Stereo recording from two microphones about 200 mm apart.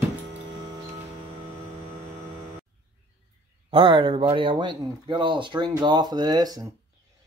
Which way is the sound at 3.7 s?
25° right (ahead or behind).